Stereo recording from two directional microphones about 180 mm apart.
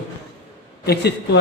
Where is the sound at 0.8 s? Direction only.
65° left (ahead or behind).